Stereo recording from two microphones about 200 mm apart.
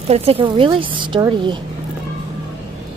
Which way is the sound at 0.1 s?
30° right (ahead or behind).